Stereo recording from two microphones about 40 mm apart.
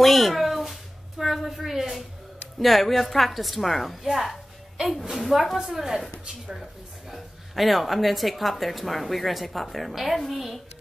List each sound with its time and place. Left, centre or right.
0.0 s a sound: centre
2.6 s speech: centre
7.1 s speech: centre